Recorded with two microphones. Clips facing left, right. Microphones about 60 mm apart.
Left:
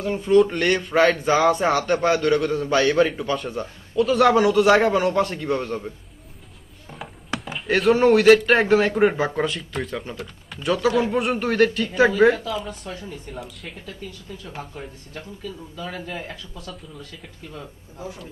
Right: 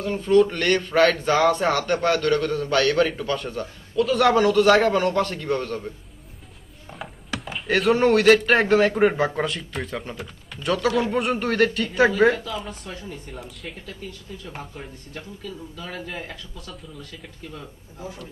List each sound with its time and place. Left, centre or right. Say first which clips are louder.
0.0 s speech: left 1 dB; centre
7.0 s speech: left 2 dB; centre